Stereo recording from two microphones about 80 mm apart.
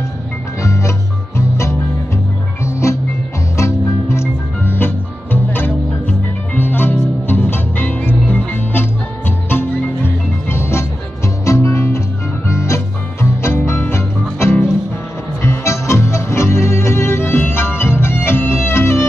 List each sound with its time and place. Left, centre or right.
0.6 s music: left